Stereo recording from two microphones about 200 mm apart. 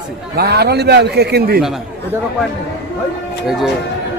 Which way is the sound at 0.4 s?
55° right (ahead or behind).